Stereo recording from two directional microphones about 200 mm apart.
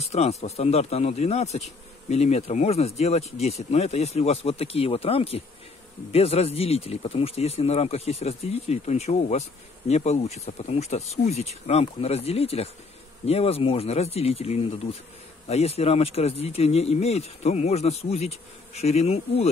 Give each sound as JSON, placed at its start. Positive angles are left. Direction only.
{"t": 0.0, "sound": "speech", "side_deg": 30}